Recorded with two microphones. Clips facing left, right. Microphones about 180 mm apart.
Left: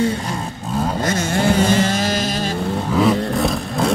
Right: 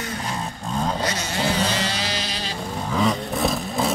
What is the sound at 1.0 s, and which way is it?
Vehicle, 50° left (ahead or behind).